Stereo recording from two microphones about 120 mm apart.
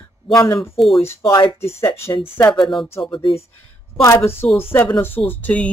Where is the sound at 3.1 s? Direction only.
50° left (ahead or behind).